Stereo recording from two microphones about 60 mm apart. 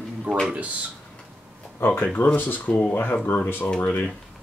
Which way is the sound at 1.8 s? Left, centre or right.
Left.